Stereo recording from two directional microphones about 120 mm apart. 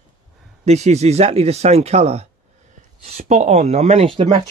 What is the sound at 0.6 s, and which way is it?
Speech, 70° right (ahead or behind).